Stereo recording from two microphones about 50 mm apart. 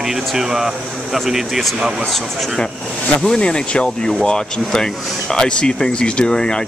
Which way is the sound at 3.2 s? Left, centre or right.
Centre.